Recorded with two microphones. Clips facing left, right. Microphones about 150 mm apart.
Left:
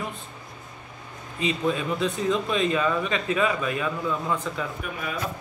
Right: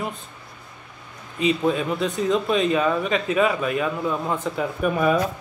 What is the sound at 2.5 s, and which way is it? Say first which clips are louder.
Speech: right 3 dB; 20° right (ahead or behind).